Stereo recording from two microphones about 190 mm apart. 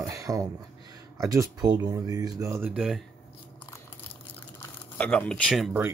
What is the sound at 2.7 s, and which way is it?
Speech, centre (ahead or behind).